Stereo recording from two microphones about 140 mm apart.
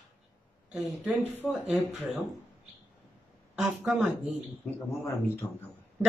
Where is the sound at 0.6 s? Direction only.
10° right (ahead or behind).